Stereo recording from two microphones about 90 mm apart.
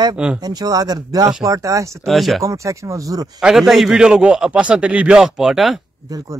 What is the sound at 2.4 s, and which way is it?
Speech, 35° right (ahead or behind).